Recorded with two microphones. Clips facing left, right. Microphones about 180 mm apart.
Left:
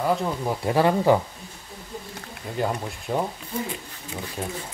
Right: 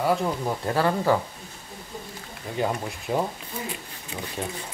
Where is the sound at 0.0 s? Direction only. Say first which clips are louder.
Even; 5° right (ahead or behind).